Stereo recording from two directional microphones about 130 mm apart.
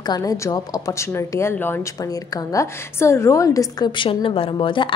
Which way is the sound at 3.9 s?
40° left (ahead or behind).